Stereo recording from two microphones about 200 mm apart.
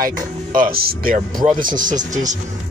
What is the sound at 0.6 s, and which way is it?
Speech, 45° right (ahead or behind).